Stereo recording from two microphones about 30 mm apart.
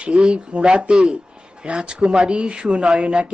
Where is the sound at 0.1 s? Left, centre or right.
Right.